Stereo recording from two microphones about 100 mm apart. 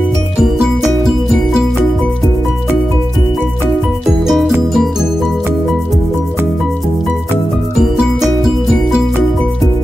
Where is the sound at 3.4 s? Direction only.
20° right (ahead or behind).